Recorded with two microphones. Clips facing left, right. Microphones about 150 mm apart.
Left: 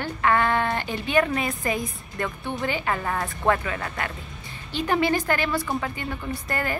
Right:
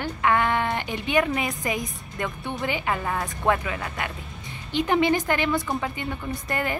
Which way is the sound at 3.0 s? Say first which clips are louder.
Even; 5° right (ahead or behind).